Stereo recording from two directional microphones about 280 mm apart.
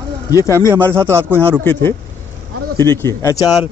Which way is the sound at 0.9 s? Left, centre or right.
Centre.